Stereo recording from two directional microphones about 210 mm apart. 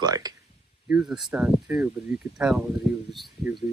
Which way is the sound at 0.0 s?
20° right (ahead or behind).